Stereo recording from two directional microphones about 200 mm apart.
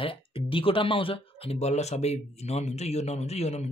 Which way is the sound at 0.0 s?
25° left (ahead or behind).